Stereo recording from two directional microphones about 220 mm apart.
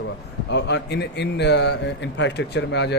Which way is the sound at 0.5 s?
50° left (ahead or behind).